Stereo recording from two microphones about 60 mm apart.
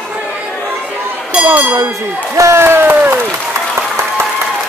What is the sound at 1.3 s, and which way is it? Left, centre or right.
Speech, right.